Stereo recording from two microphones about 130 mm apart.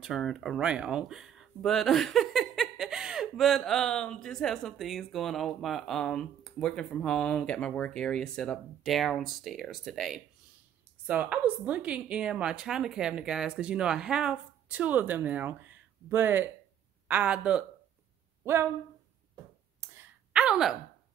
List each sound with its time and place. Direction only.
0.0 s a woman's voice: centre (ahead or behind)
18.4 s speech: 20° right (ahead or behind)
19.8 s a sound: 20° right (ahead or behind)
20.3 s speech: 5° right (ahead or behind)